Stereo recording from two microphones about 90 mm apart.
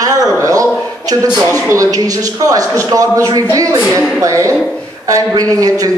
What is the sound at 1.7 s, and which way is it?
A man's voice, 40° right (ahead or behind).